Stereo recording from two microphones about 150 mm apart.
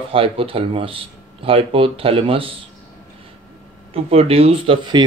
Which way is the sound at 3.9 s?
40° right (ahead or behind).